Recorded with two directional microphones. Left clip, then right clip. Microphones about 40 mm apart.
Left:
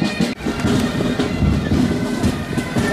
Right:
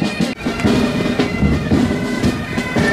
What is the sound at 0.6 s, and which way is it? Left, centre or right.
Music, right.